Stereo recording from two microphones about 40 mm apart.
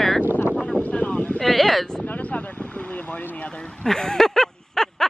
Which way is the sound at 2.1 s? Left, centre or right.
Left.